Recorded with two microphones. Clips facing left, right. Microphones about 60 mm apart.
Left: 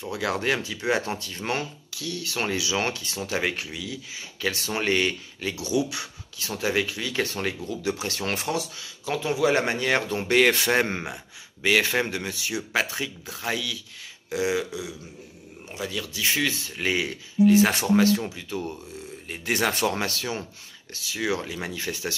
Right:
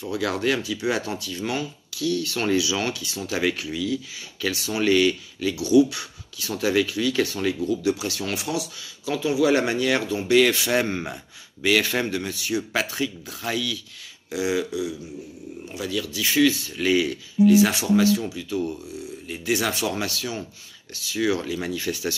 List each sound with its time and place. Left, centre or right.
0.0 s speech: left
1.9 s speech: left
4.5 s speech: left
10.7 s speech: left
19.2 s speech: left
20.9 s speech: left